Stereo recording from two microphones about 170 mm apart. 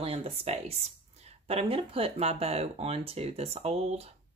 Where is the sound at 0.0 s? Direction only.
35° right (ahead or behind).